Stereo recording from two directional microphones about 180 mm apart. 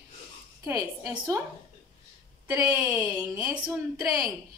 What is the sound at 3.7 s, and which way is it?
Speech, centre (ahead or behind).